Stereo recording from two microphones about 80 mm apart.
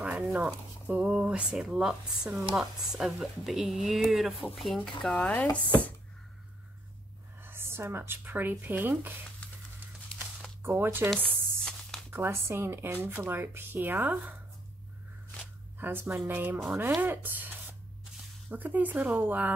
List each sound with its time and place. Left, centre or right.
0.0 s a sound: centre
0.8 s speech: centre
5.1 s speech: centre
7.4 s speech: right
9.4 s music: centre
10.6 s speech: right
11.6 s a sound: centre
12.1 s speech: right
15.8 s speech: right